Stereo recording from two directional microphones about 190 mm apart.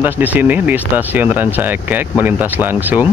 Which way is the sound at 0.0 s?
10° right (ahead or behind).